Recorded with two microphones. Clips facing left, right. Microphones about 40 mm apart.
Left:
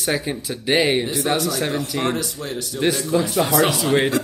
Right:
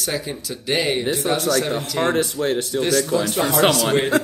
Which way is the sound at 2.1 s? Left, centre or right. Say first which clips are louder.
Right 6 dB; right.